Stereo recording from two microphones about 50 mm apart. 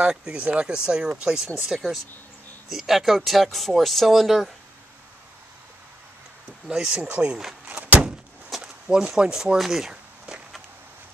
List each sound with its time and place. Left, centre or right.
0.0 s speech: centre
6.7 s speech: centre
7.0 s speech: right
7.6 s door: right
8.5 s a sound: centre
9.2 s speech: centre